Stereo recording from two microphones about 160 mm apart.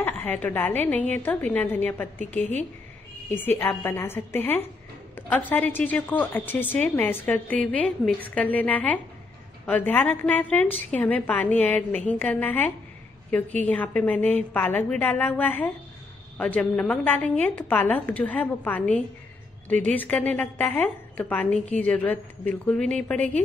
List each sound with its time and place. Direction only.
0.0 s a woman's voice: 10° left (ahead or behind)
3.3 s a woman's voice: 10° left (ahead or behind)